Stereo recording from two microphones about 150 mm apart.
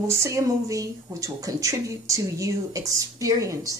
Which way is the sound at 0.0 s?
20° right (ahead or behind).